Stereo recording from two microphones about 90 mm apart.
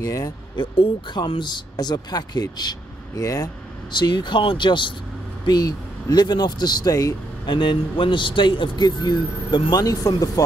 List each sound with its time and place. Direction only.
0.0 s speech: 40° left (ahead or behind)
0.6 s speech: 65° left (ahead or behind); by 3.4 s 40° left (ahead or behind)
3.9 s speech: 55° left (ahead or behind)
5.4 s speech: 50° left (ahead or behind)
7.4 s speech: 60° left (ahead or behind); by 10.4 s 40° left (ahead or behind)